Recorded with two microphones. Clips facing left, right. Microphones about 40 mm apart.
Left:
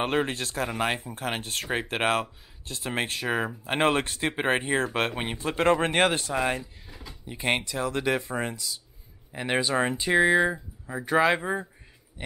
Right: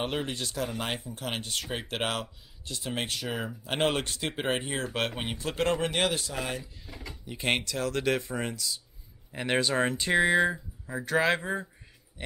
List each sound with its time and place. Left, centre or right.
0.0 s speech: left
5.1 s speech: centre
5.4 s speech: left
7.2 s speech: centre
7.6 s speech: centre
10.9 s speech: centre